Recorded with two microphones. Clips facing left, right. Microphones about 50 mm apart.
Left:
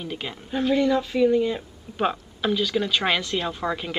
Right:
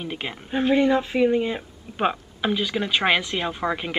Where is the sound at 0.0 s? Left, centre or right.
Right.